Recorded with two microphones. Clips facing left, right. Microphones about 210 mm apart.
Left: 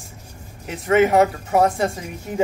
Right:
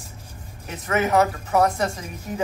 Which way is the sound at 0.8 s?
30° left (ahead or behind).